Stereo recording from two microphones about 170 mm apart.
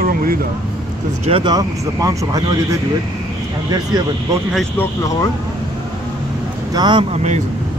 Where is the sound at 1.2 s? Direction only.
30° right (ahead or behind).